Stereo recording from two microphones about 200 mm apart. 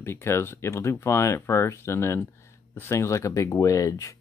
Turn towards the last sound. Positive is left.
turn(degrees=15)  # may be behind; listen again after turning